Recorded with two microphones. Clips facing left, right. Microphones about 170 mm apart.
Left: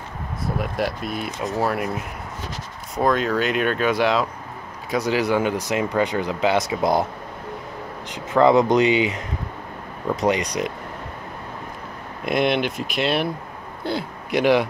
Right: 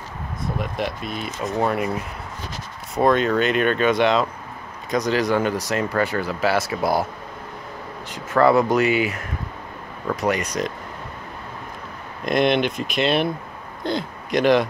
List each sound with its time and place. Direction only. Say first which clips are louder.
0.6 s speech: left 2 dB; 5° left (ahead or behind); by 7.1 s 20° left (ahead or behind)
8.1 s speech: left 1 dB; 15° left (ahead or behind)
12.3 s speech: right 2 dB; 5° left (ahead or behind)